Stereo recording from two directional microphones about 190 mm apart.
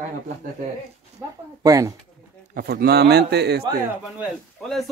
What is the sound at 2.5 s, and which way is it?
A man's voice, 55° right (ahead or behind).